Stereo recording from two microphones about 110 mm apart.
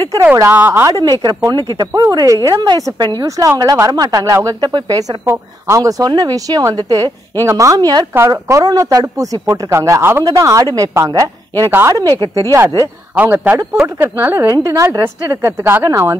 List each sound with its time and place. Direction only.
0.3 s a woman's voice: 15° right (ahead or behind)
1.0 s speech: 40° right (ahead or behind)
2.5 s a woman's voice: 45° right (ahead or behind)
3.2 s speech: 30° right (ahead or behind)
5.2 s speech: 25° right (ahead or behind)